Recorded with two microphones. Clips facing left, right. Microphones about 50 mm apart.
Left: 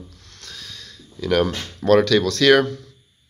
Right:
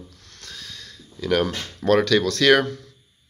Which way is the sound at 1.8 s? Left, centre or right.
Centre.